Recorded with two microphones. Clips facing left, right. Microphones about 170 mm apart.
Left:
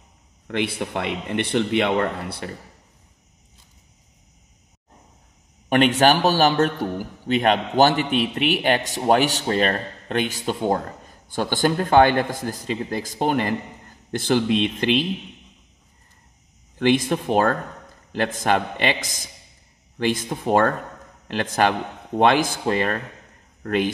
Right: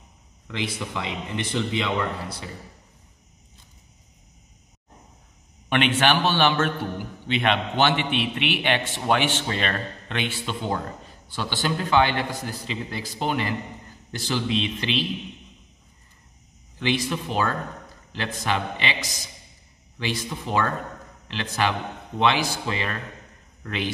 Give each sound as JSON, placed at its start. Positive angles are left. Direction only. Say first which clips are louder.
{"t": 0.5, "sound": "speech", "louder": "left 5 dB", "side_deg": 60}
{"t": 5.7, "sound": "a man's voice", "louder": "left 5 dB", "side_deg": 40}
{"t": 16.7, "sound": "a man's voice", "louder": "left 6 dB", "side_deg": 50}